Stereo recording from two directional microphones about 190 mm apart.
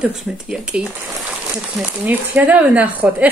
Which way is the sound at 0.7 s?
5° right (ahead or behind).